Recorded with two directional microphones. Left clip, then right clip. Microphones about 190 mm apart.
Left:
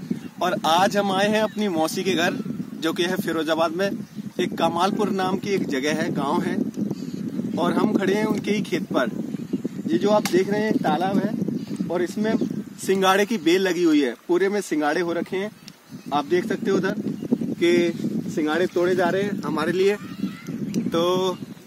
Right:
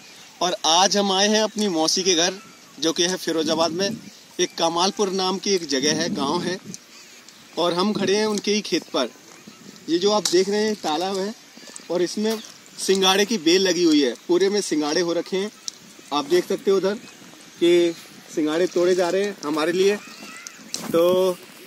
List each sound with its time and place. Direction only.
0.7 s speech: centre (ahead or behind)
17.6 s speech: 20° right (ahead or behind)
20.9 s speech: centre (ahead or behind)